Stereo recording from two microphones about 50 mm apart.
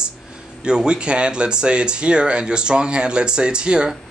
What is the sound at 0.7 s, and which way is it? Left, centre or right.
Speech, centre.